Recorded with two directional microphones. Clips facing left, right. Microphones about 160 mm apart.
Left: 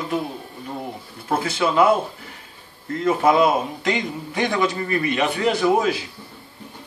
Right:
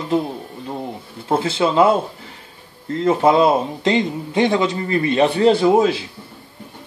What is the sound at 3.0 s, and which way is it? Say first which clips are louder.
Speech: right 3 dB; 30° right (ahead or behind).